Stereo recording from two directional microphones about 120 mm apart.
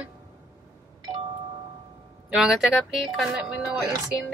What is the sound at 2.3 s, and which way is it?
Speech, centre (ahead or behind).